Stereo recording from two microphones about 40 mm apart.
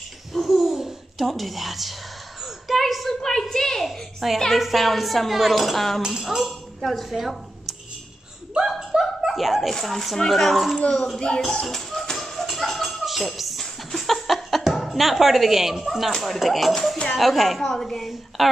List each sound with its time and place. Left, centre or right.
0.3 s babbling: centre
1.2 s a woman's voice: centre
2.4 s a sound: centre
3.2 s a woman's voice: centre
3.8 s a woman's voice: centre
8.6 s a sound: centre
9.2 s chuckle: centre
9.7 s a woman's voice: centre
11.1 s a sound: centre
11.6 s music: centre
12.4 s a sound: centre
14.7 s a woman's voice: centre
18.4 s a woman's voice: centre